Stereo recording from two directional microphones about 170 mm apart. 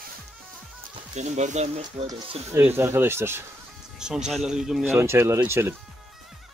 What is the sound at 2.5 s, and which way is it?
Speech, 15° right (ahead or behind).